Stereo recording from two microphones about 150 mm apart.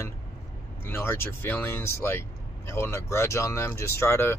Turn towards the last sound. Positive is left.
turn(degrees=15)  # may be behind; listen again after turning